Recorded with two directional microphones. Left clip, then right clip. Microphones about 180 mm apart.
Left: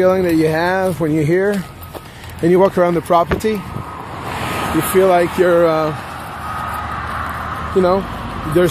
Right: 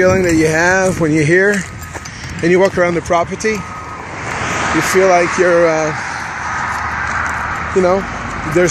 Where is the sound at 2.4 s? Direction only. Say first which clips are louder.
Right 1 dB; 10° left (ahead or behind).